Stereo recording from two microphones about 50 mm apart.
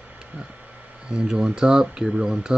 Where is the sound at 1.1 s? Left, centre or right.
Centre.